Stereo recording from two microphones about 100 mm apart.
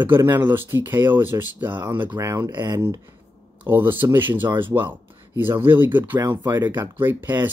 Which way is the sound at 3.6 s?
20° right (ahead or behind).